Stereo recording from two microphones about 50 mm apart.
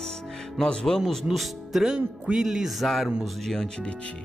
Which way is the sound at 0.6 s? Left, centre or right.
Centre.